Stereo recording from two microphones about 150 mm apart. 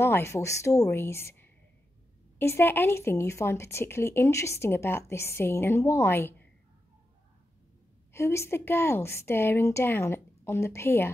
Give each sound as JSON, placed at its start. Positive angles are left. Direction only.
{"t": 0.0, "sound": "speech", "side_deg": 15}
{"t": 8.1, "sound": "speech", "side_deg": 15}